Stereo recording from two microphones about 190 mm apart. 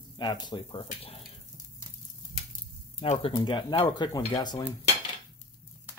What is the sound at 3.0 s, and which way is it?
Speech, 30° left (ahead or behind).